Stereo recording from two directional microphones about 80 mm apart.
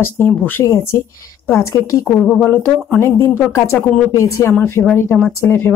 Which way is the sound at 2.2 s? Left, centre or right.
Centre.